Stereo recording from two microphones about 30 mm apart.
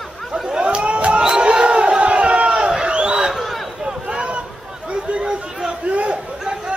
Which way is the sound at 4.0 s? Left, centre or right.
Right.